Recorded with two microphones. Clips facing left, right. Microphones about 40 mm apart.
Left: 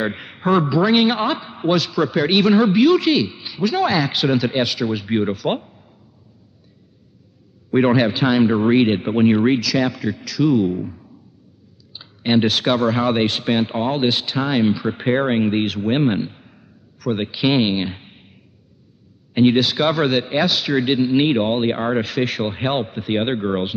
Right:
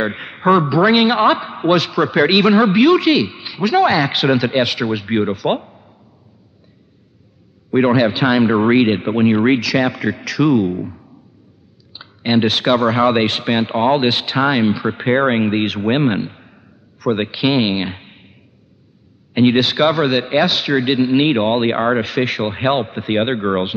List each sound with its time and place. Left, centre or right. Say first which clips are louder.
0.2 s a sound: right 7 dB; right
0.7 s speech: right 3 dB; right
5.7 s a sound: right 4 dB; right
7.7 s a man's voice: right 2 dB; centre
8.2 s speech: right 2 dB; right
9.4 s speech: right 3 dB; right
10.6 s speech: right 1 dB; right
11.9 s a sound: right 3 dB; right
12.3 s speech: right 2 dB; right
14.6 s speech: right 2 dB; right
19.3 s speech: right 2 dB; right
19.9 s speech: right 3 dB; centre; by 21.9 s right
21.9 s speech: right 3 dB; right